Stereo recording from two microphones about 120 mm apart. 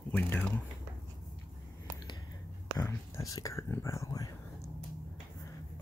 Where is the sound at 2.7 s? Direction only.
30° left (ahead or behind).